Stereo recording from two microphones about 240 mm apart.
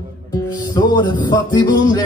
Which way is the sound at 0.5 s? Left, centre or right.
Centre.